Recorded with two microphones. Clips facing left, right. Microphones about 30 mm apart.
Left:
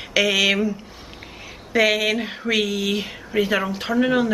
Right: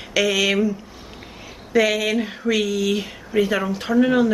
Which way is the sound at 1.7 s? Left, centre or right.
Centre.